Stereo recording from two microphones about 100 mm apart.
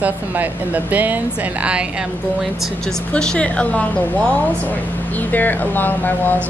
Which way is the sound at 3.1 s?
10° left (ahead or behind).